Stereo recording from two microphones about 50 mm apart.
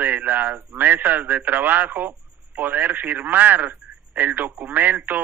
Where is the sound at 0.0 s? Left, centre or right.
Right.